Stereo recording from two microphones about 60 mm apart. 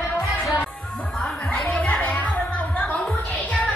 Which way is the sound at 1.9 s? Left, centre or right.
Left.